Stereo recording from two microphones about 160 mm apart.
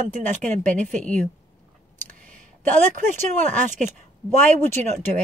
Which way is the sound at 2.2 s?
50° right (ahead or behind).